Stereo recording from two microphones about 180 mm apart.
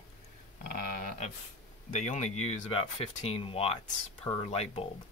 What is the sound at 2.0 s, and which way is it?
Speech, 35° left (ahead or behind).